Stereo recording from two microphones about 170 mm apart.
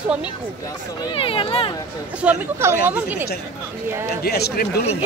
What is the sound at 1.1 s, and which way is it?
Speech, 30° left (ahead or behind).